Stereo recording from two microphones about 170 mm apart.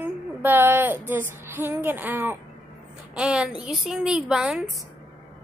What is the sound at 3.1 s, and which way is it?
A woman's voice, 5° right (ahead or behind).